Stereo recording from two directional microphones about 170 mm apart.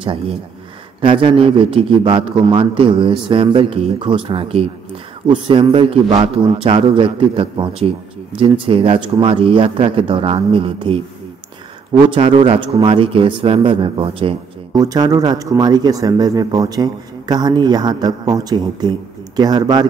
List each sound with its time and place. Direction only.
0.0 s a man's voice: 30° right (ahead or behind)
12.1 s a man's voice: 30° right (ahead or behind)